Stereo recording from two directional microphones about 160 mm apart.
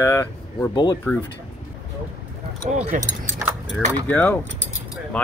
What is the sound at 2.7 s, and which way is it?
Speech, 50° right (ahead or behind).